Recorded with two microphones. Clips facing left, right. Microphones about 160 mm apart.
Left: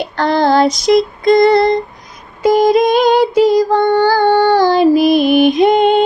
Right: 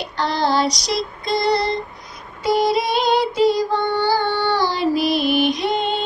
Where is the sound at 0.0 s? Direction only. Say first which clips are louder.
Left 7 dB; 50° left (ahead or behind).